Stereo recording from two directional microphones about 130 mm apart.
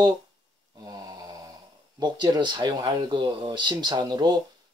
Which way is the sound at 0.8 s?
30° right (ahead or behind).